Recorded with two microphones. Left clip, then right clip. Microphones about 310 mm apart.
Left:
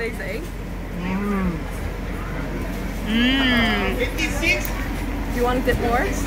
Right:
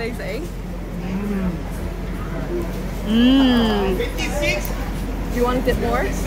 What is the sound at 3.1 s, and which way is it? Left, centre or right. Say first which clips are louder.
Speech: right 3 dB; centre.